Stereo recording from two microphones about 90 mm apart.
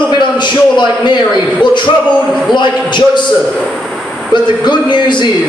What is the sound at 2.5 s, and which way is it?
Speech, 55° left (ahead or behind).